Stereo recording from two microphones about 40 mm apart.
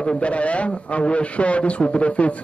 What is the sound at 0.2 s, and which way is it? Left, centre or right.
A man's voice, left.